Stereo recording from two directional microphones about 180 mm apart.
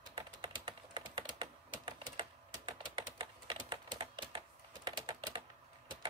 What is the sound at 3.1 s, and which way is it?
Typing, 25° right (ahead or behind).